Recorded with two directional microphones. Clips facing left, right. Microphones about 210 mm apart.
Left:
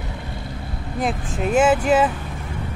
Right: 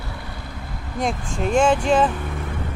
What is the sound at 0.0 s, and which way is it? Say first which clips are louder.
Vehicle: left 2 dB; 20° left (ahead or behind).